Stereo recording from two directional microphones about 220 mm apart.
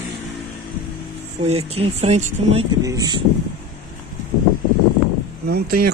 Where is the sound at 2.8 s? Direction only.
15° right (ahead or behind).